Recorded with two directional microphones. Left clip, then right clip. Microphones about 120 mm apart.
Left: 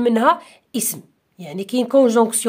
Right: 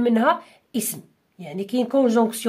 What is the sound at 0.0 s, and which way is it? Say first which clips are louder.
A woman's voice: left 4 dB; 35° left (ahead or behind).